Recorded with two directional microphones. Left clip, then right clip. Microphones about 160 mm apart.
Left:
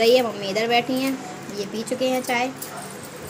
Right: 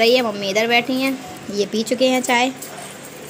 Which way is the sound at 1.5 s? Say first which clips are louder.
Right 8 dB; 35° right (ahead or behind).